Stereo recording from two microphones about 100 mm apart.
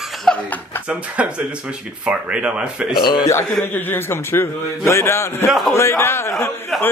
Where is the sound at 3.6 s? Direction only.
20° left (ahead or behind).